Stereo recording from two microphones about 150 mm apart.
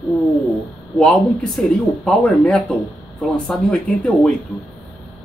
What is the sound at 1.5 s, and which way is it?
Speech, centre (ahead or behind).